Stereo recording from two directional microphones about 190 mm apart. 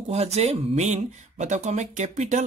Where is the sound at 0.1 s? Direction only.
35° right (ahead or behind).